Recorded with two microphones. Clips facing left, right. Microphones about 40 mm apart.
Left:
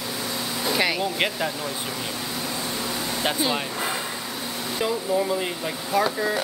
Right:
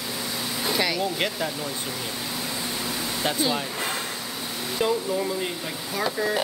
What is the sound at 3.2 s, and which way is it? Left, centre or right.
Speech, centre.